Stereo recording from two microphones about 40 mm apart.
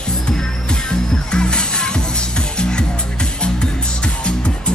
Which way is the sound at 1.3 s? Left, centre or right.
Left.